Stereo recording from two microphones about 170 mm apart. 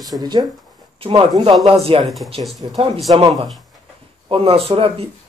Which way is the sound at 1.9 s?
30° right (ahead or behind).